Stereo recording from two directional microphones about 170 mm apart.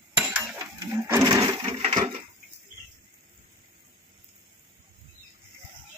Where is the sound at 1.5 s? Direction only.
35° right (ahead or behind).